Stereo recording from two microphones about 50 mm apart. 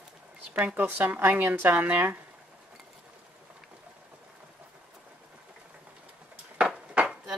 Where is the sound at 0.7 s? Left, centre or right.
Right.